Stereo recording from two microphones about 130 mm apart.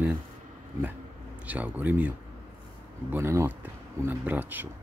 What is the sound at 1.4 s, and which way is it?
Speech, 10° right (ahead or behind).